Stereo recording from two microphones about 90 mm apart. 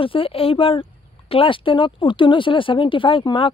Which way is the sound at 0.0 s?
80° left.